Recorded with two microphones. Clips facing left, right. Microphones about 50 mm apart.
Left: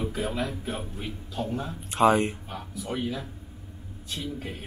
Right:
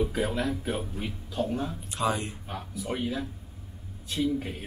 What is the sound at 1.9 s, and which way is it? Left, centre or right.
Speech, left.